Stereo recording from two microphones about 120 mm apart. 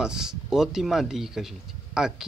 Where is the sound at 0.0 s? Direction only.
5° right (ahead or behind).